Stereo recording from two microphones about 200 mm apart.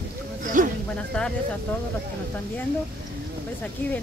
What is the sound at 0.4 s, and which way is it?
Speech, 40° right (ahead or behind).